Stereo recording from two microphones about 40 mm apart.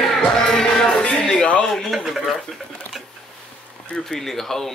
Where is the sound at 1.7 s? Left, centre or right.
Centre.